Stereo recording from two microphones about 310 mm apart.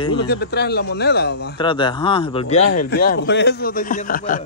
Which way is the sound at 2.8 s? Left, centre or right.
Left.